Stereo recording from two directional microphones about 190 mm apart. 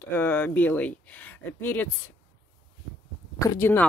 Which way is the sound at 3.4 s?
15° left (ahead or behind).